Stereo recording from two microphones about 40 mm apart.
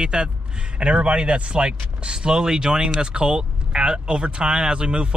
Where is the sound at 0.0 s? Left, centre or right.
Right.